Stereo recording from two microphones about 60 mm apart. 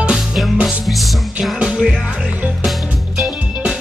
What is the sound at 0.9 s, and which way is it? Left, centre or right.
Music, centre.